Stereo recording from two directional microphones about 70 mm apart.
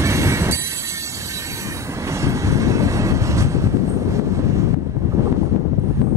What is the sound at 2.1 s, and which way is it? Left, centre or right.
Train, right.